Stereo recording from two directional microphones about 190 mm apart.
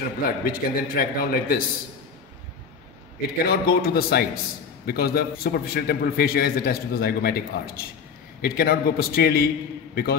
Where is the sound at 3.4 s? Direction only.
55° left (ahead or behind).